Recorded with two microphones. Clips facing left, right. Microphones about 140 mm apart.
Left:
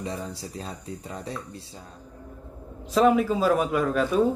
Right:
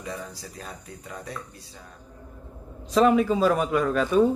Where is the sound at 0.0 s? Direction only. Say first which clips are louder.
Left 3 dB; 25° left (ahead or behind).